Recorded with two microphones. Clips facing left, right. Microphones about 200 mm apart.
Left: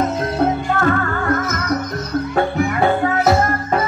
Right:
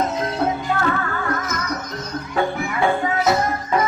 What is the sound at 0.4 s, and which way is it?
Music, 50° left (ahead or behind).